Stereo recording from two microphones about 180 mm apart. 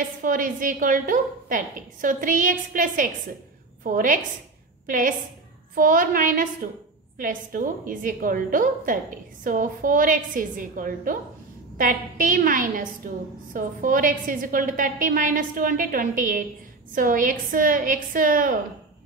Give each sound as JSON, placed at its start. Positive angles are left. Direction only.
{"t": 0.0, "sound": "a woman's voice", "side_deg": -50}